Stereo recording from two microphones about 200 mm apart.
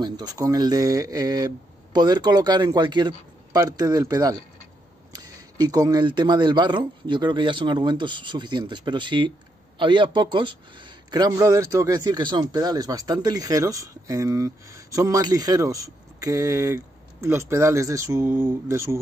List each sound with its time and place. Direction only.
0.0 s a man's voice: 20° right (ahead or behind)